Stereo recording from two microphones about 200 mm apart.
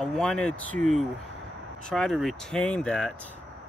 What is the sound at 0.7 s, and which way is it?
Speech, 40° right (ahead or behind).